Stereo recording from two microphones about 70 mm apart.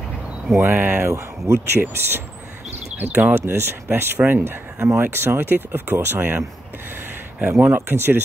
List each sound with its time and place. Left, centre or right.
0.6 s speech: right
1.1 s speech: right
7.5 s speech: right